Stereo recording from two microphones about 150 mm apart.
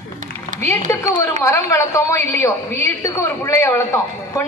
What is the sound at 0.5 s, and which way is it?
A woman's voice, 20° left (ahead or behind).